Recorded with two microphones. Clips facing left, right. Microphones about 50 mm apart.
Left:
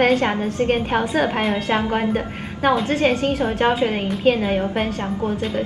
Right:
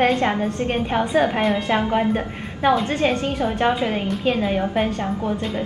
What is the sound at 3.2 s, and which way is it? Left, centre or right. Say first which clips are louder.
Speech: left 3 dB; left.